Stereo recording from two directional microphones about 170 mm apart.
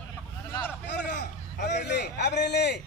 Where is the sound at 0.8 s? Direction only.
80° left.